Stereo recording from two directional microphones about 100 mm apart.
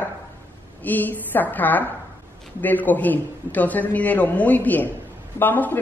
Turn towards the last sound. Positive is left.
turn(degrees=20)  # may be behind; listen again after turning